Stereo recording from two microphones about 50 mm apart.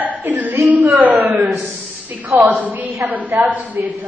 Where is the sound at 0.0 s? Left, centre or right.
Right.